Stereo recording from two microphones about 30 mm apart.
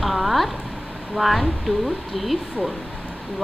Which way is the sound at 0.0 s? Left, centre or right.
Centre.